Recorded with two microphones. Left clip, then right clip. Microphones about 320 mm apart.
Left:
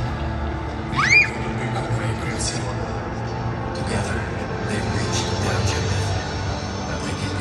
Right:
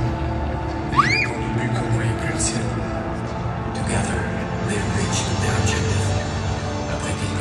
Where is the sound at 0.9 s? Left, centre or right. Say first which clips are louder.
Left 3 dB; centre.